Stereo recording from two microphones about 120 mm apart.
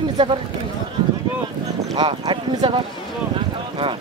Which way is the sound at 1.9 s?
40° right (ahead or behind).